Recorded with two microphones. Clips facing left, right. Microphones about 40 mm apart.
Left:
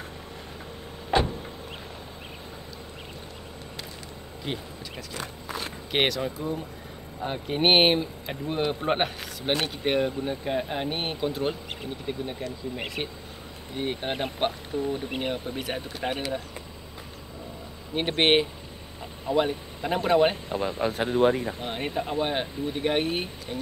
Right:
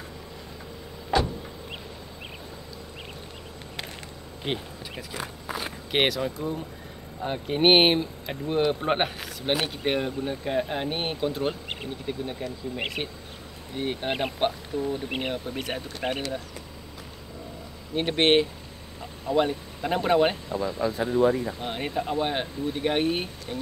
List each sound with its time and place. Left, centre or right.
1.1 s vehicle: left
4.5 s speech: right
4.9 s speech: centre
17.9 s speech: centre
19.3 s speech: centre
20.4 s speech: left
21.5 s speech: centre